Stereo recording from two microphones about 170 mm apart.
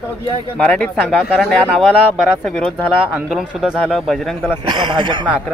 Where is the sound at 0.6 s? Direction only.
5° left (ahead or behind).